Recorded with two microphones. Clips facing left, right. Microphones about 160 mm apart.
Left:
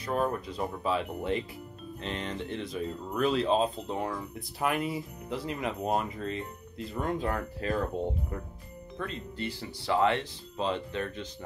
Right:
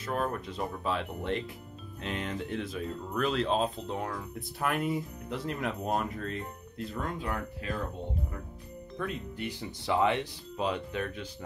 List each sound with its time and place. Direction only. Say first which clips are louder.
0.0 s speech: left 3 dB; 5° left (ahead or behind)
7.0 s speech: left 5 dB; 40° left (ahead or behind)
9.0 s speech: even; 10° right (ahead or behind)